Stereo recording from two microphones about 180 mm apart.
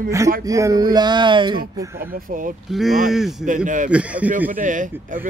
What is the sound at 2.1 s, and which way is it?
Speech, 50° right (ahead or behind).